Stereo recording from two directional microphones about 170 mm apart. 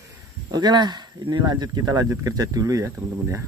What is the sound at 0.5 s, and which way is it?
Speech, 25° right (ahead or behind).